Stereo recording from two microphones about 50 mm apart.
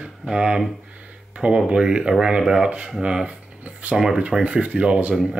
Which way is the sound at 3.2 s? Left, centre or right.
Right.